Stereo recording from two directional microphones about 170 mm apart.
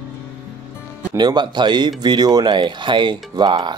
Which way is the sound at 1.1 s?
25° right (ahead or behind).